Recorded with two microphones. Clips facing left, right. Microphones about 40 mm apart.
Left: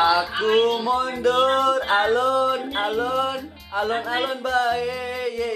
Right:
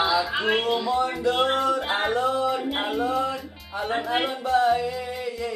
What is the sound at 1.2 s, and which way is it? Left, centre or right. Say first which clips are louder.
Music: left 4 dB; left.